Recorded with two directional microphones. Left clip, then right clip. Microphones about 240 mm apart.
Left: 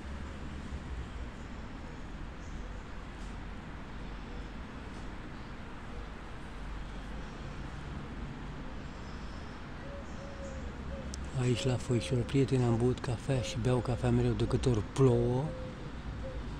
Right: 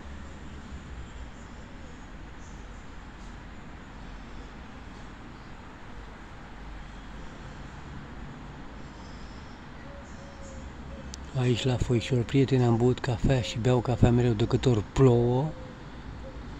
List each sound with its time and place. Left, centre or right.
11.3 s speech: centre